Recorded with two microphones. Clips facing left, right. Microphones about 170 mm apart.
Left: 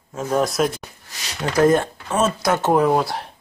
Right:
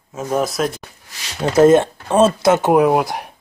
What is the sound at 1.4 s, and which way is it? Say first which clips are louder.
Speech: right 5 dB; 25° right (ahead or behind).